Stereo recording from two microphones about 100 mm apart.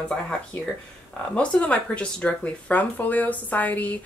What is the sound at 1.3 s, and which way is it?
Speech, 15° left (ahead or behind).